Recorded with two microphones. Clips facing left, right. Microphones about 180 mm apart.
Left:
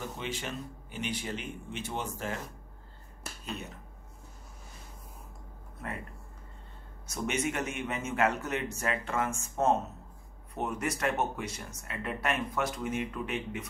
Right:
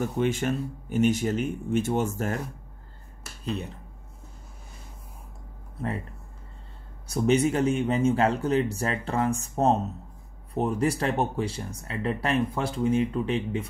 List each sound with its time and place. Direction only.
0.0 s speech: 50° right (ahead or behind)
3.4 s speech: 35° right (ahead or behind)
7.1 s speech: 30° right (ahead or behind)